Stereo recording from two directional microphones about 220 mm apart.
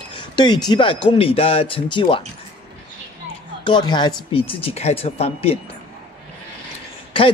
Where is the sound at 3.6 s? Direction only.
20° left (ahead or behind).